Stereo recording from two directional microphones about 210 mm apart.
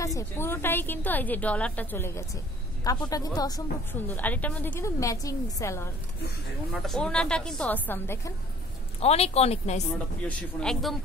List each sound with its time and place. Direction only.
0.0 s a woman's voice: 15° left (ahead or behind)
6.7 s a woman's voice: 5° left (ahead or behind)
9.0 s speech: 30° left (ahead or behind)
9.8 s a woman's voice: 5° left (ahead or behind)